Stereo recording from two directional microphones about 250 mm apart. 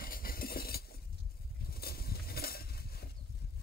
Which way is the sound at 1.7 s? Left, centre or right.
Left.